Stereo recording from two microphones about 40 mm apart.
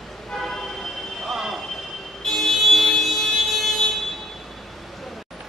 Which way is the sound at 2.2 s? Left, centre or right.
Centre.